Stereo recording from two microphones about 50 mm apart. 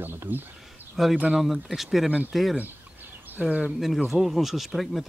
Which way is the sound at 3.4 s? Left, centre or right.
Centre.